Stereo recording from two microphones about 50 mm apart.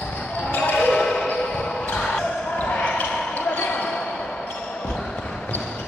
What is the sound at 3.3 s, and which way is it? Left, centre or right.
Basketball bounce, left.